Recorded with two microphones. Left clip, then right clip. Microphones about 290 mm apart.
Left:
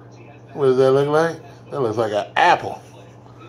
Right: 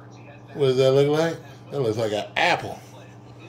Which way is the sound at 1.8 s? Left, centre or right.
Centre.